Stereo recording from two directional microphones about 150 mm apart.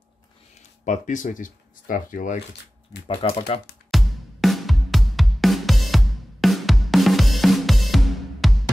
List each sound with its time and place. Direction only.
0.6 s speech: 50° left (ahead or behind)
3.1 s speech: 40° left (ahead or behind)
3.9 s music: centre (ahead or behind)